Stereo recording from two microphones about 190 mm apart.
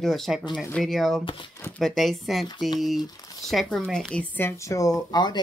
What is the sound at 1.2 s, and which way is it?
Speech, 25° left (ahead or behind).